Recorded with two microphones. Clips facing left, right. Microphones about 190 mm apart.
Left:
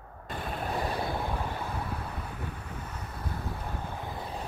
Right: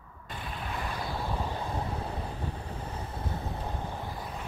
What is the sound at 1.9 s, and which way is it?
Vehicle, 30° right (ahead or behind).